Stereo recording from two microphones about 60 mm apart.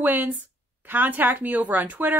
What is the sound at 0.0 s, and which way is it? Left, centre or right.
Speech, right.